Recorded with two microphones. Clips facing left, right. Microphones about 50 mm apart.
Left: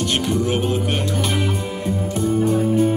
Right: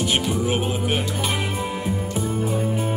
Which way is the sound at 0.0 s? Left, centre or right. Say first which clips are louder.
Left 2 dB; centre.